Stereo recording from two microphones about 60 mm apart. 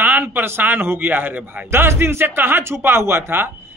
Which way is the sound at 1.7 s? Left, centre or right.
Right.